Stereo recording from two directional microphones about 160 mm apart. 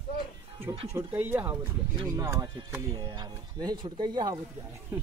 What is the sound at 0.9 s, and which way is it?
Speech, 15° right (ahead or behind).